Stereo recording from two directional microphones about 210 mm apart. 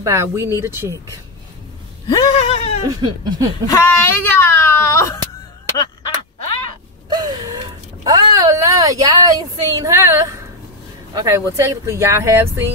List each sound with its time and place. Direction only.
0.0 s speech: 15° right (ahead or behind)
2.0 s a sound: 25° left (ahead or behind)
2.9 s speech: 20° right (ahead or behind)
3.6 s speech: 15° left (ahead or behind)
7.1 s speech: 20° right (ahead or behind)